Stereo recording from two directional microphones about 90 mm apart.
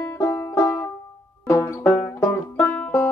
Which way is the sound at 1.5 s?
30° left (ahead or behind).